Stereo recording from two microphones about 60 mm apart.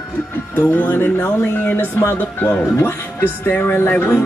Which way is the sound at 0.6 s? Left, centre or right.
Left.